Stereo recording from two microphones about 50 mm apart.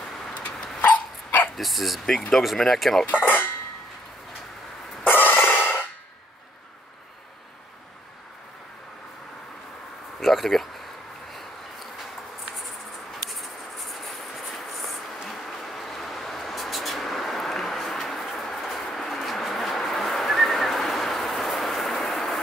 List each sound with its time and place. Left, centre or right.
0.0 s dog: centre
0.3 s dog: left
1.6 s speech: centre
3.1 s speech: left
5.0 s breathing: left
10.2 s a sound: centre
13.3 s a sound: centre